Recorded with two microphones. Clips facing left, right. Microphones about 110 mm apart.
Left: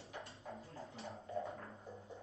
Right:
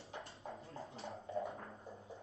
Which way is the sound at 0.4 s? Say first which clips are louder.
Right 2 dB; 30° right (ahead or behind).